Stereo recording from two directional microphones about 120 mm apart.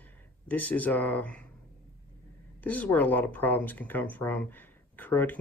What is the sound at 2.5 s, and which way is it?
Speech, 10° left (ahead or behind).